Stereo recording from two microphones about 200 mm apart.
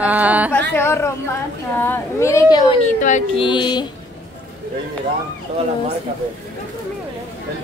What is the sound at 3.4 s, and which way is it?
Mantra, 25° left (ahead or behind).